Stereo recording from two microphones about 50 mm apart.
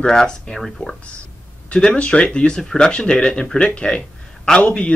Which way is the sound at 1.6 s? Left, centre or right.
Left.